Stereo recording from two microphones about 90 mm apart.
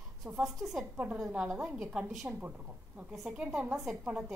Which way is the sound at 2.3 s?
20° right (ahead or behind).